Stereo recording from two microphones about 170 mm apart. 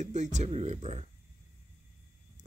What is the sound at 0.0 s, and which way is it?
Speech, 45° right (ahead or behind).